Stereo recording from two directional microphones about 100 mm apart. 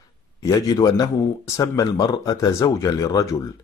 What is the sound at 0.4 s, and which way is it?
A man's voice, 35° left (ahead or behind).